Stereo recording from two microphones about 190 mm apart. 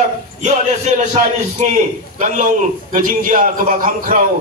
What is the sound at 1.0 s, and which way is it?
A man's voice, 35° right (ahead or behind).